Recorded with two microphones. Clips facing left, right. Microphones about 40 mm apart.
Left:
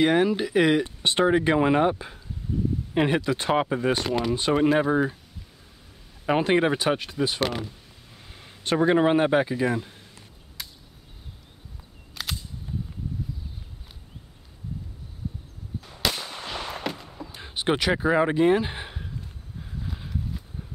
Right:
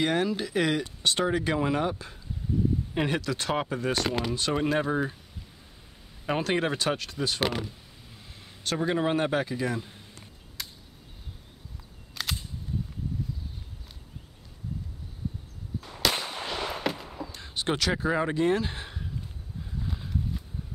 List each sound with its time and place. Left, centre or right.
0.0 s speech: centre
4.1 s speech: centre
4.4 s speech: centre
6.2 s speech: centre
7.3 s speech: centre
8.6 s speech: left
10.6 s a sound: centre
12.2 s a sound: centre
15.8 s firecracker: centre
16.8 s a sound: centre
17.4 s speech: left
19.8 s horse: centre